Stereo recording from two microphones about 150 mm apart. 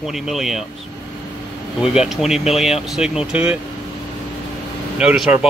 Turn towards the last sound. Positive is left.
turn(degrees=-5)  # may be behind; listen again after turning